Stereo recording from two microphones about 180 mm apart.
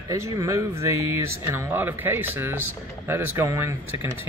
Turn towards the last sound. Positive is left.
turn(degrees=-15)  # may be behind; listen again after turning